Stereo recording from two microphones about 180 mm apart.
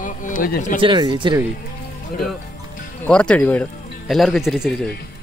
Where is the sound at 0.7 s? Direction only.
25° right (ahead or behind).